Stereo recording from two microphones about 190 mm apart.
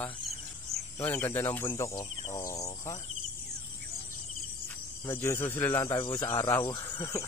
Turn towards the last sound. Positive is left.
turn(degrees=15)  # may be behind; listen again after turning